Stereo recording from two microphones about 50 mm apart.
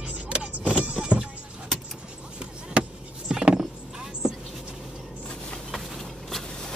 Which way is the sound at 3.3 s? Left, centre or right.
Centre.